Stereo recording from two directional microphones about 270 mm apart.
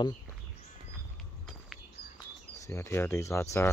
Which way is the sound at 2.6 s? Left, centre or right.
Centre.